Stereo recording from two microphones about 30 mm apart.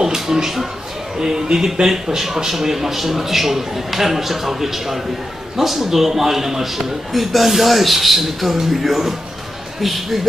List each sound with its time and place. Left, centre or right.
0.0 s music: centre
1.2 s speech: right
2.2 s a man's voice: centre